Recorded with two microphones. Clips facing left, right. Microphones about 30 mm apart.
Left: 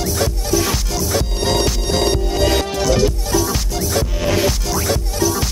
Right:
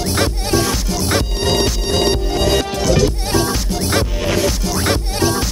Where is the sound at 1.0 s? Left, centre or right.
Right.